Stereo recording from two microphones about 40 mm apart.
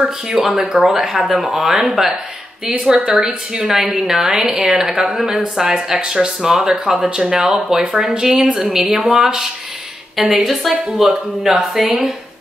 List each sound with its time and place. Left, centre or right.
0.0 s speech: centre
0.5 s speech: centre
2.9 s a woman's voice: right
3.5 s speech: centre